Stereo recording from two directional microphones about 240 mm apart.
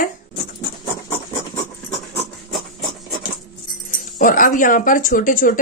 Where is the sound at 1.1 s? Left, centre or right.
Centre.